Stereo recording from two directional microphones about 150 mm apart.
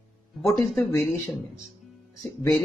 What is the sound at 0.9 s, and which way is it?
Speech, 20° left (ahead or behind).